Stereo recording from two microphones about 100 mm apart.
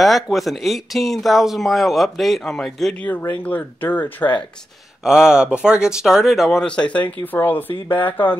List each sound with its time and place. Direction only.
0.0 s speech: centre (ahead or behind)
3.0 s speech: 15° left (ahead or behind)
5.0 s speech: 5° right (ahead or behind); by 8.4 s 20° left (ahead or behind)